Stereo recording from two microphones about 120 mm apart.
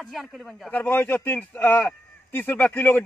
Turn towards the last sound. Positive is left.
turn(degrees=15)  # may be behind; listen again after turning